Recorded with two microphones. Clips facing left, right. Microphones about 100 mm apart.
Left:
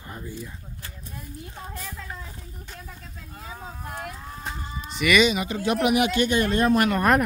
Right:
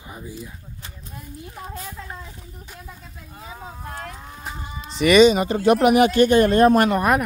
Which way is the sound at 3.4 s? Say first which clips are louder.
Right 2 dB; 15° right (ahead or behind).